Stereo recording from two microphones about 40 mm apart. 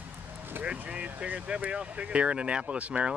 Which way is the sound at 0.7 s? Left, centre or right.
Right.